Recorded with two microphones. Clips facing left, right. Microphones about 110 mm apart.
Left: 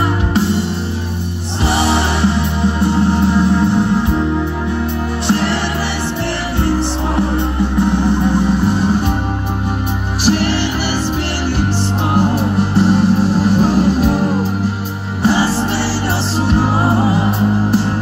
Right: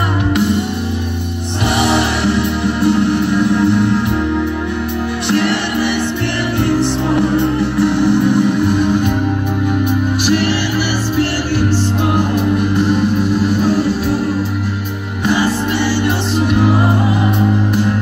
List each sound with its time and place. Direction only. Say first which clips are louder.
2.0 s music: right 1 dB; 25° left (ahead or behind)
10.2 s music: left 3 dB; 40° left (ahead or behind)
12.7 s music: left 2 dB; 35° left (ahead or behind)